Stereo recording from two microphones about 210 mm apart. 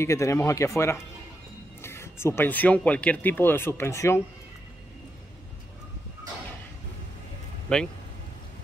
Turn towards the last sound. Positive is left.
turn(degrees=5)  # may be behind; listen again after turning